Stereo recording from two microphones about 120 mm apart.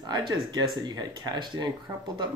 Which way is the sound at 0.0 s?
35° right (ahead or behind).